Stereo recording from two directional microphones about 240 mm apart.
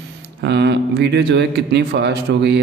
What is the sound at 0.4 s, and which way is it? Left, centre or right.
A man's voice, right.